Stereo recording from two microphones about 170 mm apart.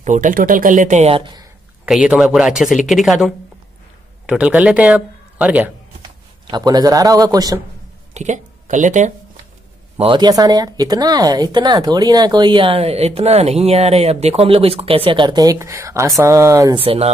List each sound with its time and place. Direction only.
0.0 s speech: 50° right (ahead or behind); by 1.5 s 25° right (ahead or behind)
1.9 s a man's voice: 5° right (ahead or behind)
6.4 s speech: 25° right (ahead or behind)
8.1 s speech: 45° right (ahead or behind)
9.9 s speech: 30° right (ahead or behind)
16.7 s speech: 35° right (ahead or behind)